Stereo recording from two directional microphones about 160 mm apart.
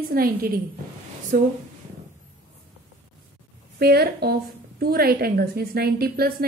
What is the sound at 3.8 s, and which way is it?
A woman's voice, 80° right.